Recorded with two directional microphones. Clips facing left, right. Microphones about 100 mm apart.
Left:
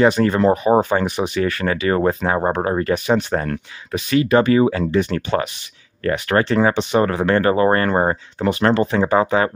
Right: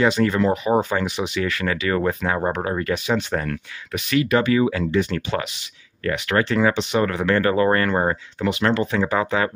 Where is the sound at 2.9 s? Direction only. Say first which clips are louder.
Left 4 dB; 45° left (ahead or behind).